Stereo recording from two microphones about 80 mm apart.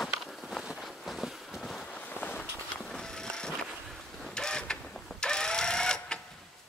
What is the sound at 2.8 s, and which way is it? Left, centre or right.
Vehicle, centre.